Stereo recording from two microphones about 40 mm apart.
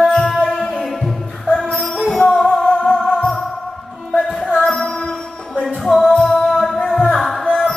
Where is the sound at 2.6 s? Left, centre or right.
Centre.